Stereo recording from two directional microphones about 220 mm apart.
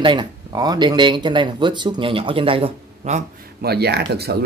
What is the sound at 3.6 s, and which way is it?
Speech, 45° right (ahead or behind).